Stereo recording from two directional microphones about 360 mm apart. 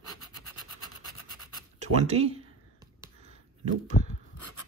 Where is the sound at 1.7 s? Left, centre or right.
Centre.